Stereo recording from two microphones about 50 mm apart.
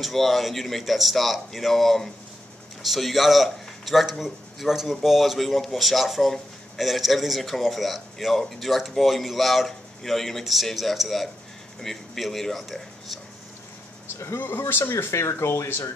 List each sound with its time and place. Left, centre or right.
0.0 s speech: centre
14.4 s speech: left
15.1 s speech: left